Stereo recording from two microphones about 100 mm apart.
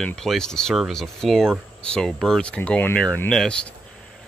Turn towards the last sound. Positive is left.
turn(degrees=10)  # may be behind; listen again after turning